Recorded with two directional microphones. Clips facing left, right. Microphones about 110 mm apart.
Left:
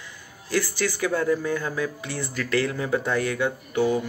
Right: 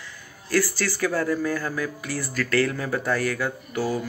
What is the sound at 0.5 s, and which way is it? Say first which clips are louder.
Speech: right 1 dB; 20° left (ahead or behind).